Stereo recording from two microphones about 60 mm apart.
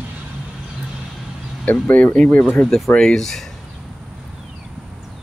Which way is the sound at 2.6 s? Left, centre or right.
Centre.